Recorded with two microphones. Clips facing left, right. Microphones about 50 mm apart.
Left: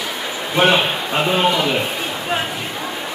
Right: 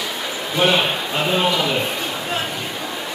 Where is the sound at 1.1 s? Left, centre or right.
Centre.